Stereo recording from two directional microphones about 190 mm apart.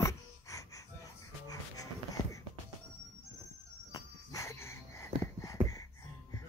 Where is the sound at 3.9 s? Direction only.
15° left (ahead or behind).